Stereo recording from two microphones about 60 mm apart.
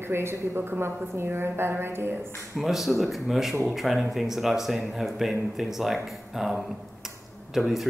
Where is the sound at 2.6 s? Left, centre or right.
Centre.